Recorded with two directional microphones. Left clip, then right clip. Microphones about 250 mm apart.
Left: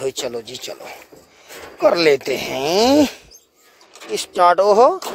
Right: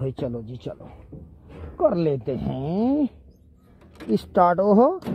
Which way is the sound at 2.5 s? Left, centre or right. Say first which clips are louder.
Left 16 dB; left.